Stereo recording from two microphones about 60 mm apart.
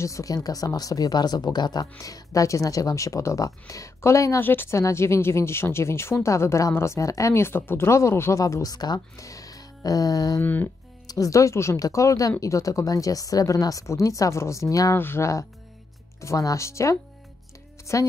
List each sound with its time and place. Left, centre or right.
0.0 s speech: left
2.0 s speech: left
4.4 s speech: left
4.7 s speech: left
7.4 s speech: left
8.4 s speech: left
10.4 s speech: left
11.1 s speech: left
13.8 s speech: left
15.0 s speech: left
16.2 s speech: left